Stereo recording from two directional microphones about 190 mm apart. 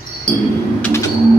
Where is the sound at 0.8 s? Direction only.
10° left (ahead or behind).